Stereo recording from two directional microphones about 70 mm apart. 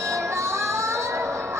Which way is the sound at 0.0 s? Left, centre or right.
Right.